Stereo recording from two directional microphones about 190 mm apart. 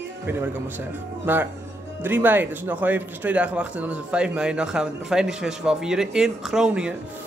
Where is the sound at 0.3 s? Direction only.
10° right (ahead or behind).